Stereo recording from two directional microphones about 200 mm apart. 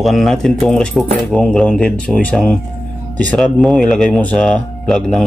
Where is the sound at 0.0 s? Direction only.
Centre (ahead or behind).